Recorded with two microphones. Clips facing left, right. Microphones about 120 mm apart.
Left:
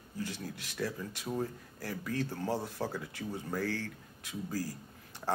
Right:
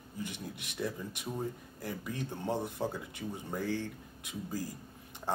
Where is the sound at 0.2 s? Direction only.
20° right (ahead or behind).